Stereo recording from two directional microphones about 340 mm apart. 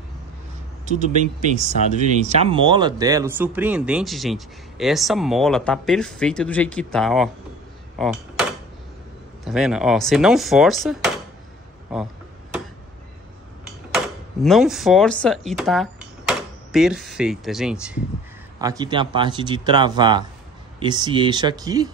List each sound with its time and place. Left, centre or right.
0.8 s speech: right; by 7.2 s centre
8.0 s a sound: centre
9.4 s speech: centre
13.9 s speech: centre